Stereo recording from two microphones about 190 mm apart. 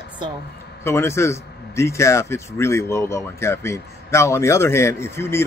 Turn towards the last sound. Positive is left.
turn(degrees=15)  # may be behind; listen again after turning